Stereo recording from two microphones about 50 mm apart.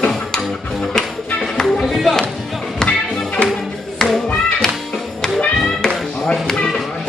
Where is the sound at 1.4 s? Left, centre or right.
Centre.